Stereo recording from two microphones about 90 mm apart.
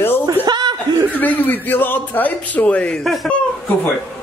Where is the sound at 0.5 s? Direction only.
55° right (ahead or behind).